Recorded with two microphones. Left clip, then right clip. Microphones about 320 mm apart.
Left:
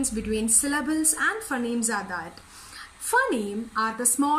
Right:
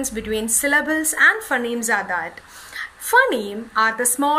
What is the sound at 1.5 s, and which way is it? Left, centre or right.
Speech, right.